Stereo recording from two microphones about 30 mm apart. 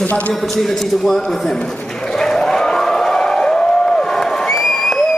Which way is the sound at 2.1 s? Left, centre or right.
Centre.